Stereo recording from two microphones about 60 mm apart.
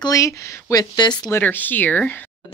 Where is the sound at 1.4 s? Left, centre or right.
Left.